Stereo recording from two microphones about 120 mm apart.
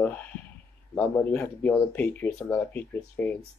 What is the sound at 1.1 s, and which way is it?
Speech, 15° left (ahead or behind).